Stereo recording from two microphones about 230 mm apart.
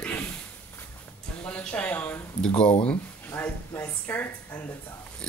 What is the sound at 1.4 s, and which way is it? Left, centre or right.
Speech, centre.